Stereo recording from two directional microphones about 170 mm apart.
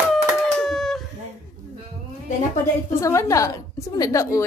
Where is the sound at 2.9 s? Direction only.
20° left (ahead or behind).